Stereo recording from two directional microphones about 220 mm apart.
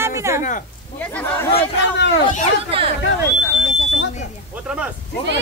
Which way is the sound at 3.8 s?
55° left (ahead or behind).